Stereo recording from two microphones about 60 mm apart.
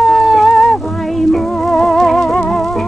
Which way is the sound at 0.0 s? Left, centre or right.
Centre.